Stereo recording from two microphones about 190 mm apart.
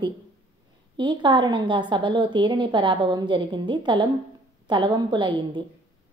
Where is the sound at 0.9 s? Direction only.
25° right (ahead or behind).